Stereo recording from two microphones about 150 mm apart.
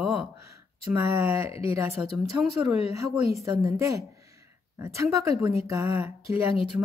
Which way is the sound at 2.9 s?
20° right (ahead or behind).